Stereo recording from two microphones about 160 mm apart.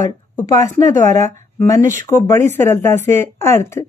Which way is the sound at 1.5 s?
15° left (ahead or behind).